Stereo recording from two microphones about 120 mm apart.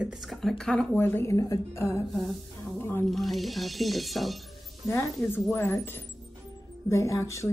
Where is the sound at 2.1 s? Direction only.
Centre (ahead or behind).